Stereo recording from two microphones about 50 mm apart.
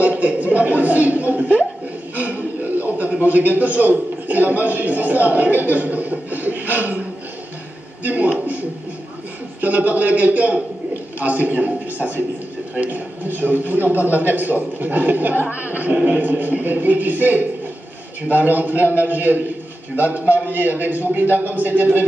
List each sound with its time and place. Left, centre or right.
0.0 s a man's voice: right
8.0 s a man's voice: right